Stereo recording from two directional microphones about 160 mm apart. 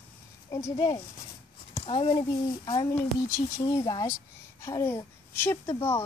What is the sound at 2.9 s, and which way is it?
A child's voice, 15° left (ahead or behind).